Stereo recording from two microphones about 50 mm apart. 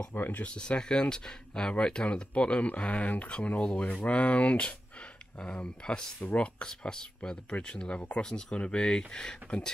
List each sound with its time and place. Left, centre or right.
0.1 s speech: left
0.4 s speech: centre